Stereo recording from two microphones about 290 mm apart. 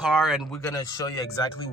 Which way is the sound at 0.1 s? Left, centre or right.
Centre.